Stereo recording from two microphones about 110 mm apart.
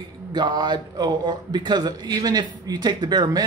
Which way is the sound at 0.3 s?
40° right (ahead or behind).